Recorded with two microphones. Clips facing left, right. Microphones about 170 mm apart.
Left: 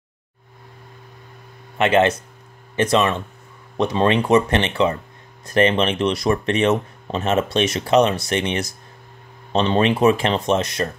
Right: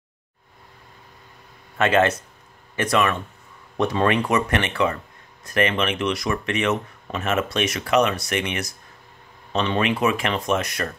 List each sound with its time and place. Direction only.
1.8 s speech: 20° left (ahead or behind)